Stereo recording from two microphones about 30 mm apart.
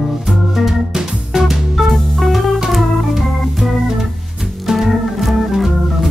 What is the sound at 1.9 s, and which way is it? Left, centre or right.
Music, centre.